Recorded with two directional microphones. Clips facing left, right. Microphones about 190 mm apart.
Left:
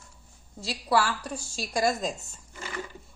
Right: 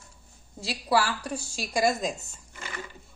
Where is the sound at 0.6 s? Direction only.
5° right (ahead or behind).